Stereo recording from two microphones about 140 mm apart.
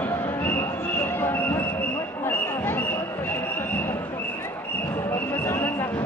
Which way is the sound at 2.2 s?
15° left (ahead or behind).